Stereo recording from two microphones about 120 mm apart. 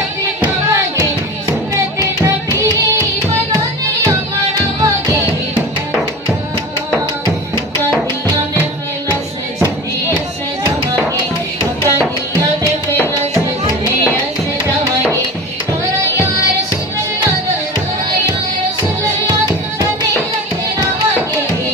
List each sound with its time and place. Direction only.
0.4 s music: 25° right (ahead or behind)
2.0 s music: 30° right (ahead or behind)
19.2 s music: 30° right (ahead or behind)